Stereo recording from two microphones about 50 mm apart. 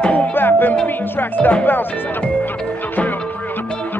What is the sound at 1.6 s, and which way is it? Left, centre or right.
Speech, left.